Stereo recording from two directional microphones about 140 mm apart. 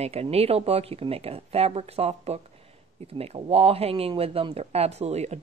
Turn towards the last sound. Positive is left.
turn(degrees=-50)  # may be behind; listen again after turning